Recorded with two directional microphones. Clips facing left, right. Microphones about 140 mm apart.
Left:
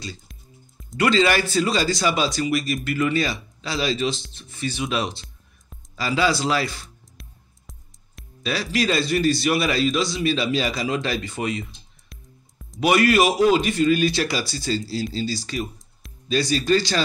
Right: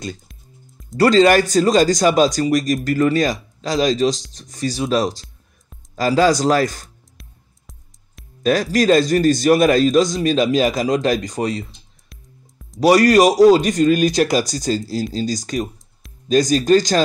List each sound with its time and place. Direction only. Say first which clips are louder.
0.3 s music: right 1 dB; centre (ahead or behind)
0.9 s a man's voice: right 7 dB; 40° right (ahead or behind)
7.2 s music: even; centre (ahead or behind)
8.4 s a man's voice: right 8 dB; 45° right (ahead or behind)
12.1 s music: right 1 dB; centre (ahead or behind)
12.8 s a man's voice: right 6 dB; 40° right (ahead or behind)